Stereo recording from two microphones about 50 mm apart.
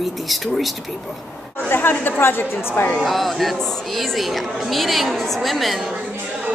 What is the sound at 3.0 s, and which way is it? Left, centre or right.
A woman's voice, centre.